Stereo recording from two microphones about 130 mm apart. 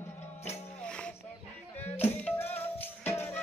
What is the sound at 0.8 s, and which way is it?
Music, 5° left (ahead or behind).